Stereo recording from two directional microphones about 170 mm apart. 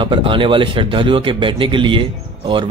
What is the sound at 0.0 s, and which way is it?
A man's voice, 30° right (ahead or behind).